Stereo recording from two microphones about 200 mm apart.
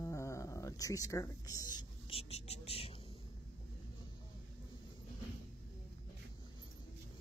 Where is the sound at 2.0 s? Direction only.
30° left (ahead or behind).